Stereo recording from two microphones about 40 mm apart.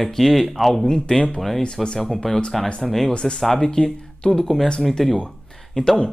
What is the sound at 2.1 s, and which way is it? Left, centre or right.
Speech, centre.